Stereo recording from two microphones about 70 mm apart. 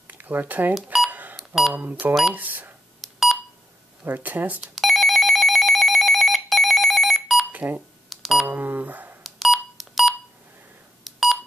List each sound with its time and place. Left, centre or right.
0.1 s speech: right
1.3 s beep: centre
1.7 s speech: right
3.0 s telephone dialing: centre
4.0 s speech: right
4.6 s telephone bell ringing: centre
7.5 s speech: right
8.1 s beep: centre
8.5 s speech: right
9.2 s beep: centre
11.1 s telephone dialing: centre